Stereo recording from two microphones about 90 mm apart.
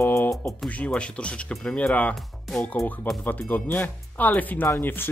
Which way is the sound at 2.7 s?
20° left (ahead or behind).